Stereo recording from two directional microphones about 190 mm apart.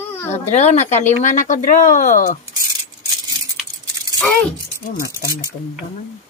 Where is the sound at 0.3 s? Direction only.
35° left (ahead or behind).